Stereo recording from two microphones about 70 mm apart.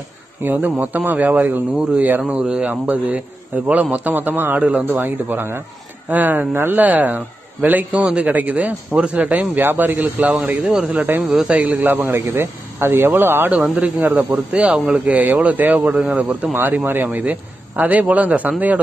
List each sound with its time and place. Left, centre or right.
0.4 s a man's voice: right
10.5 s speech: centre
11.8 s a man's voice: right
12.4 s speech: right
13.5 s a man's voice: centre
15.9 s speech: centre
16.5 s a man's voice: right